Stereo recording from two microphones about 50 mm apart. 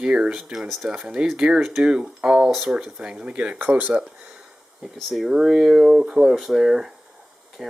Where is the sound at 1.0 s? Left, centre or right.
Centre.